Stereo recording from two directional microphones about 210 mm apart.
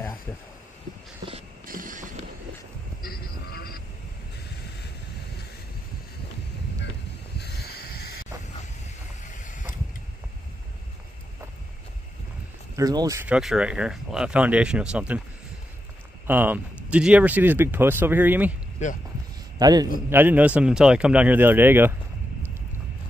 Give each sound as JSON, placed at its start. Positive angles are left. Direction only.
{"t": 1.7, "sound": "vehicle", "side_deg": -40}
{"t": 3.0, "sound": "a sound", "side_deg": 45}
{"t": 7.3, "sound": "a sound", "side_deg": 50}
{"t": 9.2, "sound": "vehicle", "side_deg": 35}
{"t": 12.7, "sound": "speech", "side_deg": -15}
{"t": 16.3, "sound": "speech", "side_deg": -10}
{"t": 19.6, "sound": "speech", "side_deg": -20}